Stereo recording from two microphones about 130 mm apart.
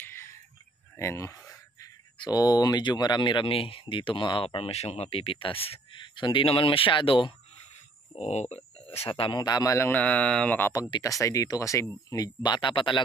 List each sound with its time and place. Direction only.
0.0 s a sound: 20° left (ahead or behind)
0.9 s speech: 20° left (ahead or behind); by 7.3 s 40° left (ahead or behind)
8.2 s speech: 55° left (ahead or behind)
9.0 s a man's voice: 45° left (ahead or behind); by 10.7 s 10° left (ahead or behind)
10.7 s speech: 30° left (ahead or behind)